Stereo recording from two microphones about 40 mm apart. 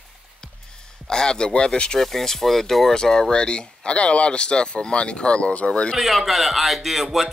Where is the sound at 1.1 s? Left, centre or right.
Centre.